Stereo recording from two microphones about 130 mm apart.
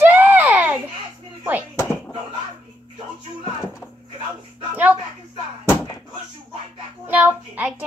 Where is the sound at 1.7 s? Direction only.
15° left (ahead or behind).